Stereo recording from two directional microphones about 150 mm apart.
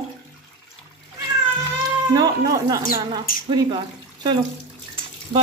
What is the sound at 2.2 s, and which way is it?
Speech, 25° right (ahead or behind).